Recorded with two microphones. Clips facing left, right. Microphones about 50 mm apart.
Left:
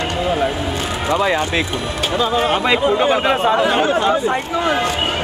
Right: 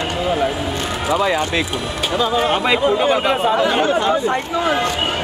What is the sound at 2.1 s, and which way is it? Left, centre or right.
Speech, centre.